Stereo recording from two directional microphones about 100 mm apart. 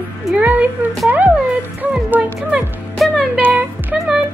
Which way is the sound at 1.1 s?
20° right (ahead or behind).